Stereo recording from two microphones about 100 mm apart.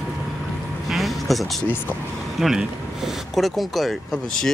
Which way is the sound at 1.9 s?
10° left (ahead or behind).